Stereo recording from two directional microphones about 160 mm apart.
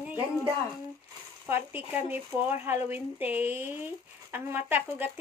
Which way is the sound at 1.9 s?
15° right (ahead or behind).